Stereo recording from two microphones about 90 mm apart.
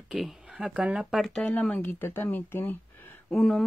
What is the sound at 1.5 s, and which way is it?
Speech, 15° left (ahead or behind).